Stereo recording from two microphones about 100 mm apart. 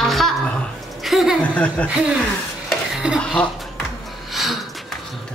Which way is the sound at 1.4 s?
15° left (ahead or behind).